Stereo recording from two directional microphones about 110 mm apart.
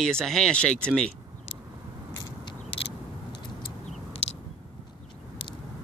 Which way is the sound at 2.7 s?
60° left (ahead or behind).